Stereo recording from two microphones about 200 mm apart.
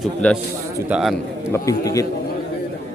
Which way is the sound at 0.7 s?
5° right (ahead or behind).